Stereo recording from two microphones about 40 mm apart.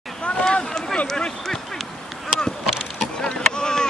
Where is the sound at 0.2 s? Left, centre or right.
Left.